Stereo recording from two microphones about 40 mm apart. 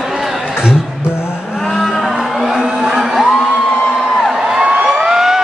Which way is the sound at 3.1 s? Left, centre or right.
Centre.